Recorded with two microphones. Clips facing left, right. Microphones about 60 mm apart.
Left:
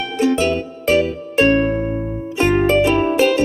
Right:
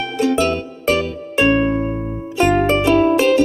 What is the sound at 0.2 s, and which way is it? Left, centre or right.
Music, left.